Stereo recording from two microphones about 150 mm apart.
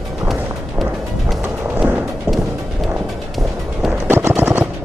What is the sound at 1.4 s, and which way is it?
Music, 15° right (ahead or behind).